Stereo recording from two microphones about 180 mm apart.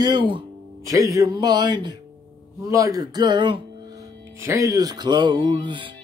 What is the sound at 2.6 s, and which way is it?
Music, 15° right (ahead or behind).